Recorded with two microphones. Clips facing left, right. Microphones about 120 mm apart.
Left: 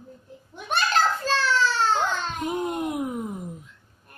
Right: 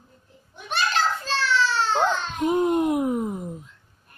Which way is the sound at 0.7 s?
45° left (ahead or behind).